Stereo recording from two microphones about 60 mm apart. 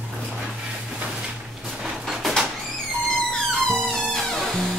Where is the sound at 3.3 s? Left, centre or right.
Centre.